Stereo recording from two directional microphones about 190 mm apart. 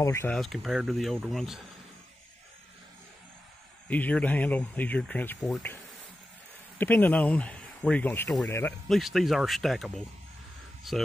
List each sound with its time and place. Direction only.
0.0 s speech: 15° left (ahead or behind)
0.3 s speech: centre (ahead or behind)
3.9 s speech: 10° left (ahead or behind)
6.8 s speech: 10° left (ahead or behind)
8.8 s speech: centre (ahead or behind)